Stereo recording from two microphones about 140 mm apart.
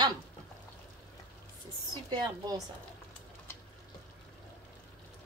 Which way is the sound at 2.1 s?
30° right (ahead or behind).